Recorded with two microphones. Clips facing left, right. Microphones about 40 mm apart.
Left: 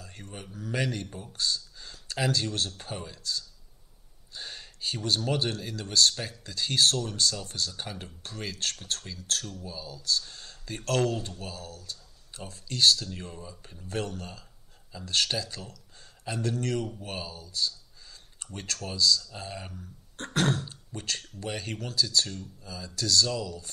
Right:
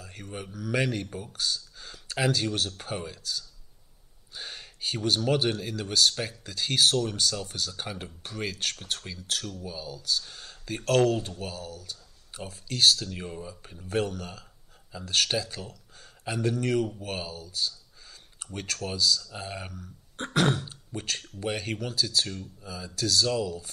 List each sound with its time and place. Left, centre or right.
0.1 s speech: right
0.7 s speech: right
4.3 s speech: right
10.2 s a sound: centre
10.9 s speech: right
18.4 s speech: centre
23.4 s speech: right